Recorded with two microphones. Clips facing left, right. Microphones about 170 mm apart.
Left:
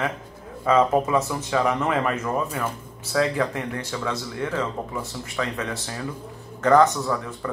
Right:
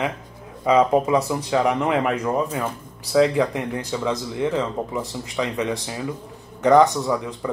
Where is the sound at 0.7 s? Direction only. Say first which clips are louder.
Right 2 dB; 15° right (ahead or behind).